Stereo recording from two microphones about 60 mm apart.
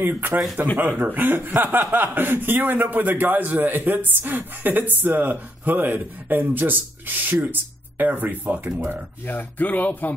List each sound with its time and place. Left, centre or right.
0.0 s speech: right
9.2 s speech: left